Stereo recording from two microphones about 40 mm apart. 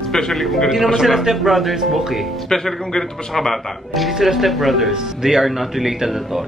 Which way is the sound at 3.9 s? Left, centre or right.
Centre.